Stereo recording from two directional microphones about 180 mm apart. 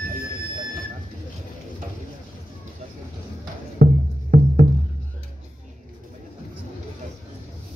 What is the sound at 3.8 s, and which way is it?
Music, 55° right (ahead or behind).